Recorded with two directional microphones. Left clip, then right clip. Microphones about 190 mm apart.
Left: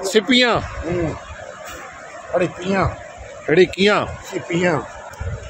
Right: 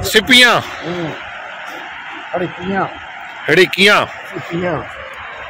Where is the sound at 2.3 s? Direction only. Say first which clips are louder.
Even; 25° left (ahead or behind).